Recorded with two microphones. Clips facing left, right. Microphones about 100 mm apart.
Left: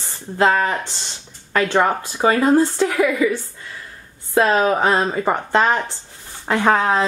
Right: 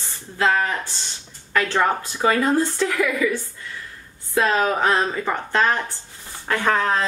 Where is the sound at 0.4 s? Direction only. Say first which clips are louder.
Left 4 dB; 50° left (ahead or behind).